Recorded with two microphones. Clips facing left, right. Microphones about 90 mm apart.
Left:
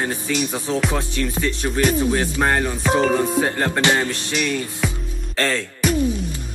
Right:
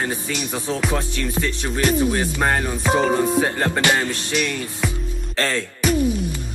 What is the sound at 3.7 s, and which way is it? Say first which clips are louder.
Music: left 1 dB; 20° left (ahead or behind).